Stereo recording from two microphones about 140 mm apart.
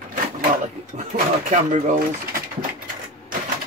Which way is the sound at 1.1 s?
65° right (ahead or behind).